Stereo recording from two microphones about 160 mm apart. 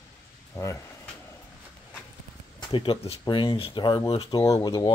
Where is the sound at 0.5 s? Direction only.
20° left (ahead or behind).